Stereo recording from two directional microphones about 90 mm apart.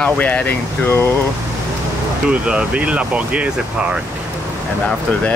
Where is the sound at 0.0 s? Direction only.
15° left (ahead or behind).